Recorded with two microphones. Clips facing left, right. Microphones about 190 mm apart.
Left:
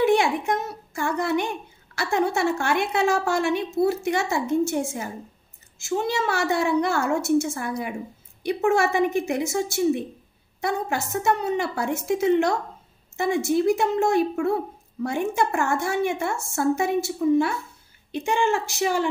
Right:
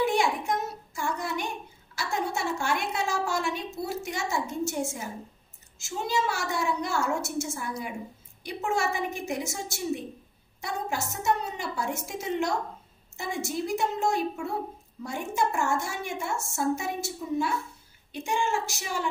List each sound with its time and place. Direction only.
0.0 s a woman's voice: 65° left (ahead or behind)
10.6 s a woman's voice: 65° left (ahead or behind)